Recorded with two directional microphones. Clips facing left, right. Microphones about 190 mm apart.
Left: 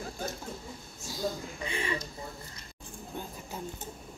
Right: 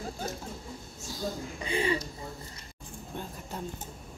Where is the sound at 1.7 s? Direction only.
30° right (ahead or behind).